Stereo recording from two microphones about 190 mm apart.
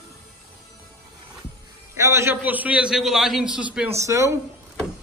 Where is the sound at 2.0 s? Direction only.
15° right (ahead or behind).